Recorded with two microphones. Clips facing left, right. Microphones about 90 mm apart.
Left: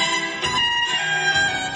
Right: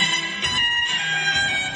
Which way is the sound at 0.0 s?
20° left (ahead or behind).